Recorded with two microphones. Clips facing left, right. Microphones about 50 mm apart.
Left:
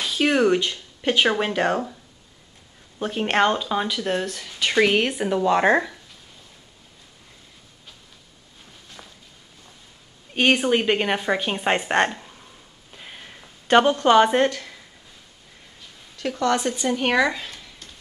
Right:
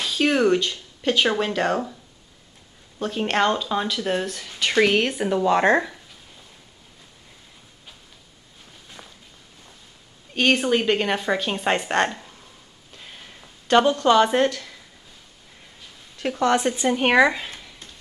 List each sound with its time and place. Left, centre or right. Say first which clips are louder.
0.0 s speech: even; centre
0.6 s speech: even; left
3.0 s speech: left 1 dB; centre
9.0 s walk: even; centre
10.3 s a woman's voice: left 1 dB; centre
12.2 s a sound: left 1 dB; centre
13.7 s speech: left 1 dB; left
14.3 s a woman's voice: even; centre
16.2 s a woman's voice: right 2 dB; centre